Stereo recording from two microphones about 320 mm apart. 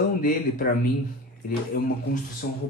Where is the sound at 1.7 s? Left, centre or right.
Left.